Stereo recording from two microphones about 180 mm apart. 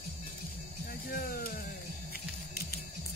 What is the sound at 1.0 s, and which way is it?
Music, 55° left (ahead or behind).